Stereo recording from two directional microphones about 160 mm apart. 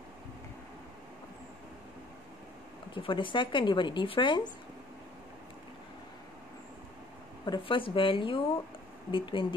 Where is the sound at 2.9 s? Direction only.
30° left (ahead or behind).